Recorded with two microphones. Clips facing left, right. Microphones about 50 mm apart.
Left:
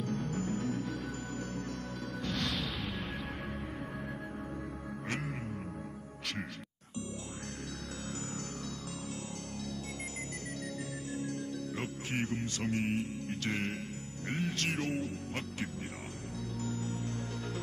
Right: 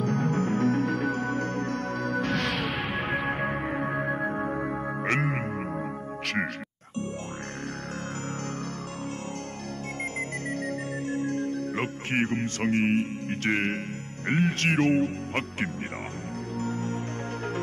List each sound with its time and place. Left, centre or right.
0.0 s music: right
10.5 s music: right